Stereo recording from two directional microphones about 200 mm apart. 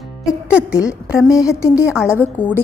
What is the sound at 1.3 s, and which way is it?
A woman's voice, 15° left (ahead or behind).